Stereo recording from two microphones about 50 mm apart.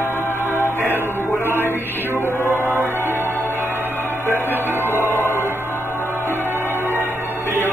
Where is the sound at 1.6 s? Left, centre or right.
Left.